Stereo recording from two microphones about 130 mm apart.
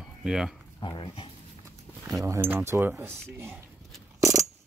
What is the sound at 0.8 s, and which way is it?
Speech, 40° left (ahead or behind).